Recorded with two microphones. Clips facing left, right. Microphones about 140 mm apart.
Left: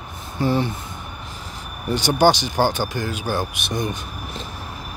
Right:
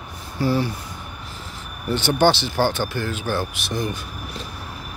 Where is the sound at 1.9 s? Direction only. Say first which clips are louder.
Left 1 dB; 15° left (ahead or behind).